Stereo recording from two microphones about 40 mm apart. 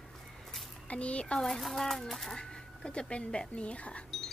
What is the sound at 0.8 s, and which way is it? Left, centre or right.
Speech, left.